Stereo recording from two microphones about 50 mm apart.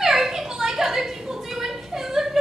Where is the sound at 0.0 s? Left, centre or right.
Centre.